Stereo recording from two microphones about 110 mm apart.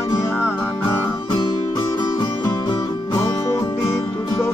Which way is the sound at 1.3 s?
45° left (ahead or behind).